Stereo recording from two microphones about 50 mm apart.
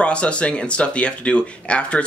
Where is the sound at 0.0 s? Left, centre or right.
Left.